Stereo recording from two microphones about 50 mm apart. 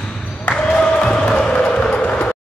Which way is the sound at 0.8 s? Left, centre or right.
Centre.